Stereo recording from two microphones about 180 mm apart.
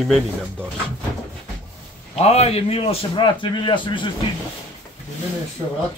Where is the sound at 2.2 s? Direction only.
35° left (ahead or behind).